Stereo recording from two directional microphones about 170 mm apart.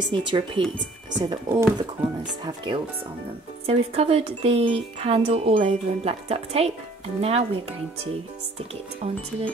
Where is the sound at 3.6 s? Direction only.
35° right (ahead or behind).